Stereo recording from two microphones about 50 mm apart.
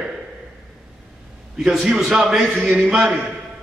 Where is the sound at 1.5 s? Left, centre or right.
Centre.